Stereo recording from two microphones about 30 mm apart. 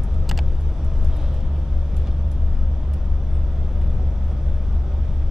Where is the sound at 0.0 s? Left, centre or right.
Centre.